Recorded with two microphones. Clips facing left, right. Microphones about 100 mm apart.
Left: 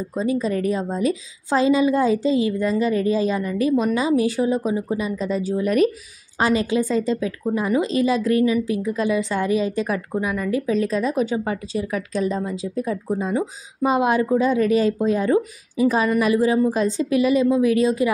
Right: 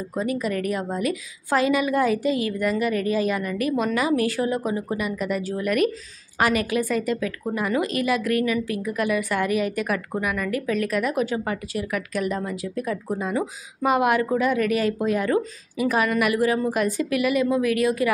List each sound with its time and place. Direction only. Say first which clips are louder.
0.2 s a woman's voice: left 3 dB; 25° left (ahead or behind)